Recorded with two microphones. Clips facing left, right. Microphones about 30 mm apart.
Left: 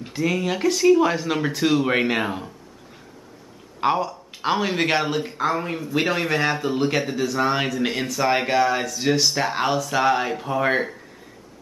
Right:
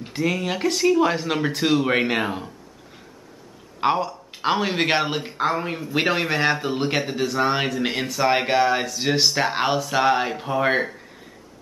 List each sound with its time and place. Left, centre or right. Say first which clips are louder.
0.0 s a man's voice: left 1 dB; centre
3.8 s a man's voice: even; centre